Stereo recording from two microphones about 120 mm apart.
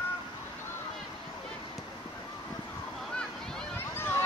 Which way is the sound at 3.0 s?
5° left (ahead or behind).